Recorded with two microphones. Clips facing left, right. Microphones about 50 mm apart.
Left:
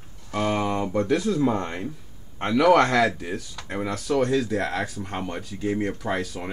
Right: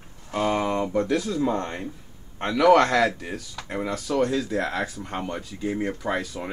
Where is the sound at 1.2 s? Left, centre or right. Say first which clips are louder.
Left 2 dB; left.